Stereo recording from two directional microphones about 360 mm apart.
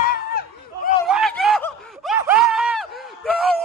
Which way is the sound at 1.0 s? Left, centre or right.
Centre.